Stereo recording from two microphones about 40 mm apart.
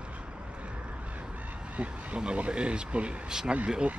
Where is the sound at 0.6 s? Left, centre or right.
Right.